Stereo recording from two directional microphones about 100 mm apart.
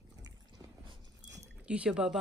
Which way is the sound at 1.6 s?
10° right (ahead or behind).